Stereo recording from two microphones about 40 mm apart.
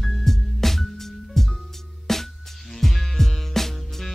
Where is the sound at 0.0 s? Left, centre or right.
Centre.